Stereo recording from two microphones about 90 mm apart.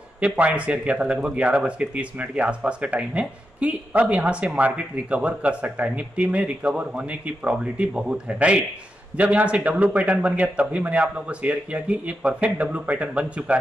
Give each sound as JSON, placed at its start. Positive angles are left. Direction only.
{"t": 0.2, "sound": "speech", "side_deg": -10}